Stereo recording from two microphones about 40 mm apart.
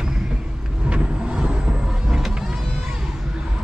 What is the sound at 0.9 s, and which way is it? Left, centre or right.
Vehicle, right.